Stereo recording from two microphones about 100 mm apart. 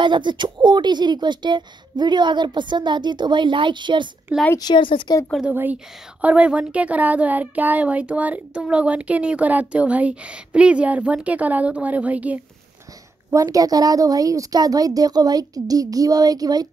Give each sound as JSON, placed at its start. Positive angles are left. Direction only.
{"t": 0.0, "sound": "speech", "side_deg": -50}
{"t": 4.6, "sound": "a woman's voice", "side_deg": 50}
{"t": 5.5, "sound": "speech", "side_deg": -20}
{"t": 13.3, "sound": "a woman's voice", "side_deg": -35}